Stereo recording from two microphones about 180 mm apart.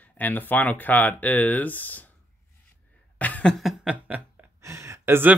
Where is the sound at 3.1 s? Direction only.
10° left (ahead or behind); by 5.4 s 10° right (ahead or behind).